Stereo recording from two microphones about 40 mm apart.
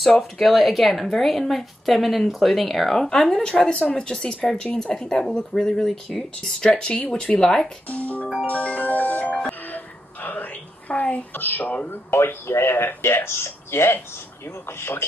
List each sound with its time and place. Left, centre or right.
0.2 s speech: centre
6.7 s speech: left
7.4 s speech: centre
7.9 s music: left
9.7 s wail: left
11.3 s speech: left